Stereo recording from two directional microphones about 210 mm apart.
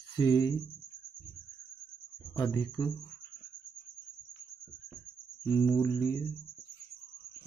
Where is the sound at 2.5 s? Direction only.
20° left (ahead or behind).